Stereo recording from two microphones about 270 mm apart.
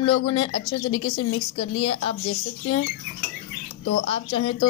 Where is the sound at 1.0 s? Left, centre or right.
Left.